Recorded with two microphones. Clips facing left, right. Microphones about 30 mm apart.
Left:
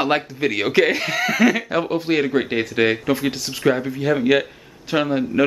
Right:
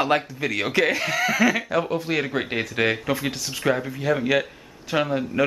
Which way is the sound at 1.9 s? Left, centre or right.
Left.